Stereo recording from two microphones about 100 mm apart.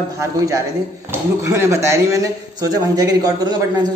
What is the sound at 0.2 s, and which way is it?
A man's voice, 30° right (ahead or behind).